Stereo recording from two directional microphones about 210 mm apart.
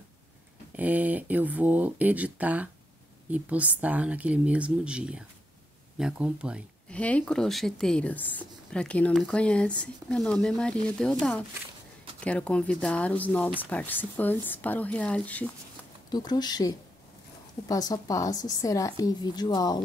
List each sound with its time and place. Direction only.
0.7 s speech: 5° right (ahead or behind)
7.0 s a woman's voice: 5° left (ahead or behind)
16.1 s a woman's voice: 20° left (ahead or behind)